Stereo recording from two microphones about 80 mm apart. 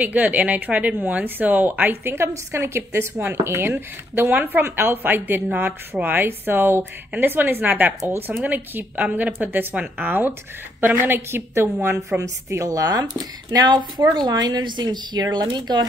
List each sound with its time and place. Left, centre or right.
0.0 s a woman's voice: centre; by 15.9 s right